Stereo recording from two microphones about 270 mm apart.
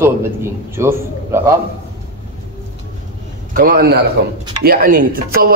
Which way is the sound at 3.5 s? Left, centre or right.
Right.